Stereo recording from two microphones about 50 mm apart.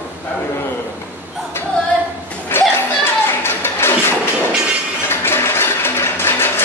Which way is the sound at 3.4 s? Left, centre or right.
Left.